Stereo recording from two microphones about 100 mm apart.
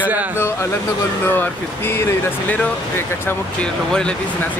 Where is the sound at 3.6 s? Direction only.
10° left (ahead or behind).